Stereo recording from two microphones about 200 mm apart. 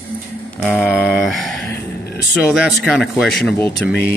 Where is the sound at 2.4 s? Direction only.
Centre (ahead or behind).